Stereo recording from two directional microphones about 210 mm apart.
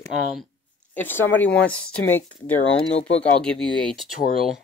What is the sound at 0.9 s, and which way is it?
Speech, 10° left (ahead or behind).